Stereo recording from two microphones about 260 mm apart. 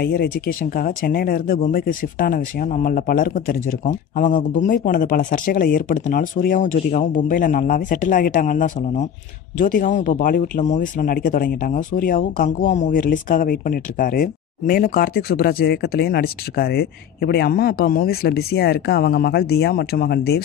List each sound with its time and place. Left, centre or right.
0.0 s speech: left